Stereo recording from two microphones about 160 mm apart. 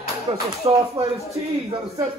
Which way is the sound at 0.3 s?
40° right (ahead or behind).